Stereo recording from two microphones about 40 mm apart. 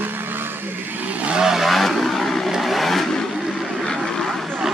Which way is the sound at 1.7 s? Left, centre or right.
Centre.